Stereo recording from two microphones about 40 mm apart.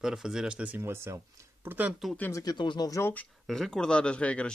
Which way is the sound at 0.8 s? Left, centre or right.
Right.